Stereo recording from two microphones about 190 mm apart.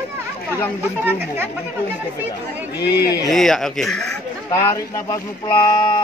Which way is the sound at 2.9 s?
55° left (ahead or behind).